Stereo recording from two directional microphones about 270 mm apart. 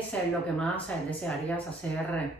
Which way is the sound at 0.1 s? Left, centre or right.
Centre.